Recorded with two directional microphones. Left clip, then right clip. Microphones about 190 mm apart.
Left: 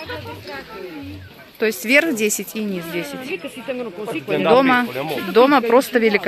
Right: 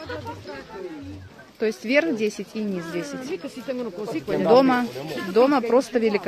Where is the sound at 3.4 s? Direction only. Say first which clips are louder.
Left 3 dB; 50° right (ahead or behind).